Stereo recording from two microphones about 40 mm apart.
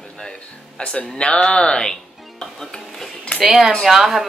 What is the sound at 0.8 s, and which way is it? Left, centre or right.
Speech, left.